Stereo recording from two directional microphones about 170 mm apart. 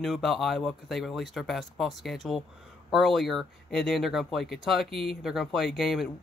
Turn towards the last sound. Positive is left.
turn(degrees=0)  # may be behind; listen again after turning